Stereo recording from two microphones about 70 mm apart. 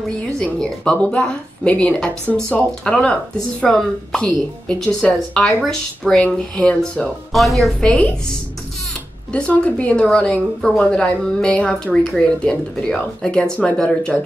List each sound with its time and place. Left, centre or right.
0.1 s a woman's voice: centre
7.8 s a woman's voice: centre
9.3 s a woman's voice: centre